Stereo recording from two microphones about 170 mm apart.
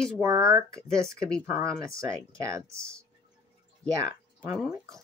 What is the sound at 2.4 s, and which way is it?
Speech, 15° right (ahead or behind).